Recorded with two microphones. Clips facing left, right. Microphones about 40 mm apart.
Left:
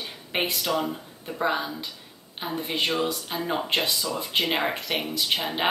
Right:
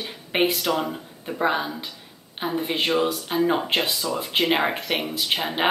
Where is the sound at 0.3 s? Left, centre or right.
Centre.